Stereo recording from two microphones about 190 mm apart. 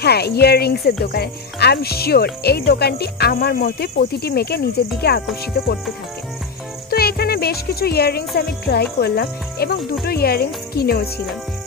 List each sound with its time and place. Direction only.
0.0 s speech: 60° left (ahead or behind)
6.9 s music: 55° left (ahead or behind)
8.4 s speech: 55° left (ahead or behind)